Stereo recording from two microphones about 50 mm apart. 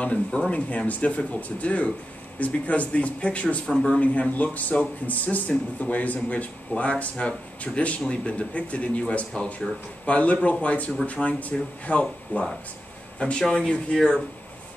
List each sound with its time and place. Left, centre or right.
0.0 s speech: left
13.4 s speech: centre